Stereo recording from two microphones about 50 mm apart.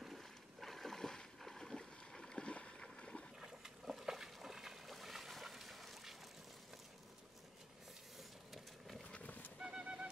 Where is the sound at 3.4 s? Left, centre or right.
Centre.